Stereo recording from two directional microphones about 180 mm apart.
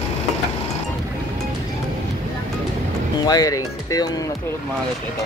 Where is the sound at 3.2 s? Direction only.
20° left (ahead or behind).